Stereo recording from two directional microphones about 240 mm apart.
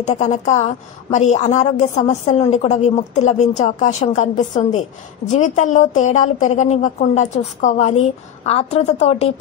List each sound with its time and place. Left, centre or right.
0.0 s a woman's voice: left